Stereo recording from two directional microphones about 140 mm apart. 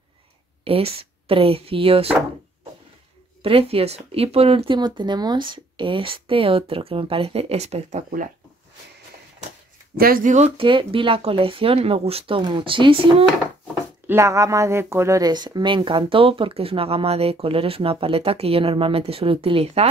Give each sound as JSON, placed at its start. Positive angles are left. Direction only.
{"t": 0.7, "sound": "speech", "side_deg": -45}
{"t": 3.4, "sound": "speech", "side_deg": -45}
{"t": 4.7, "sound": "speech", "side_deg": -30}
{"t": 9.9, "sound": "speech", "side_deg": -90}
{"t": 10.6, "sound": "speech", "side_deg": -40}
{"t": 14.0, "sound": "speech", "side_deg": -20}